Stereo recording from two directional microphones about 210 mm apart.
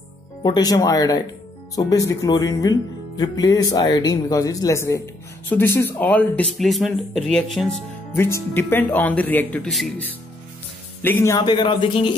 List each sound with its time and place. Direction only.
0.4 s speech: 20° left (ahead or behind); by 7.7 s centre (ahead or behind)
8.2 s speech: 10° left (ahead or behind)